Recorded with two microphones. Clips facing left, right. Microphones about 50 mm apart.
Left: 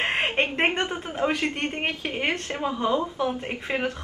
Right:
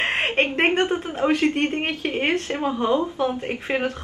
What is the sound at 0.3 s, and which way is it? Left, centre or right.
A woman's voice, centre.